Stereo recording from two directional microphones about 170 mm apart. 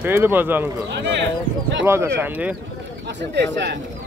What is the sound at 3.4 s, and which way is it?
Speech, 90° right.